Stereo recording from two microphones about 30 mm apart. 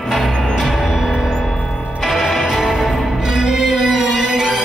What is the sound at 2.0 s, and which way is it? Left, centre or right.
Music, centre.